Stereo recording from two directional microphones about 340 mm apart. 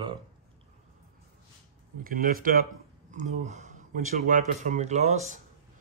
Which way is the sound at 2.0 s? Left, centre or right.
Right.